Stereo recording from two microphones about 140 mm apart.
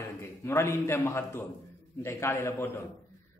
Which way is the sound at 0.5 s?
20° left (ahead or behind).